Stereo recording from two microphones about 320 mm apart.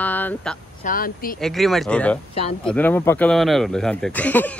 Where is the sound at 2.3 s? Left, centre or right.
Centre.